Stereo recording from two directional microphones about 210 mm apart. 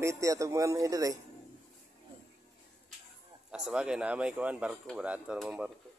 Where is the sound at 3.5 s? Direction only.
5° right (ahead or behind).